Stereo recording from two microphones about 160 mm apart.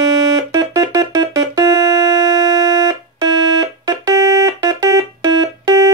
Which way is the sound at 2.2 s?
25° right (ahead or behind).